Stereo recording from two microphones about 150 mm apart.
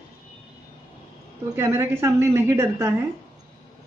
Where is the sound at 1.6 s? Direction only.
20° right (ahead or behind).